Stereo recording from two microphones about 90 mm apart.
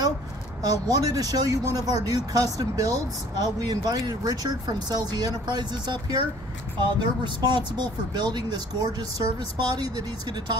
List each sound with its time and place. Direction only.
0.6 s speech: 45° right (ahead or behind)